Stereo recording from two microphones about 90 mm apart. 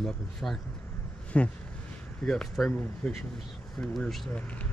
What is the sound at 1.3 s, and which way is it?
Speech, 15° left (ahead or behind).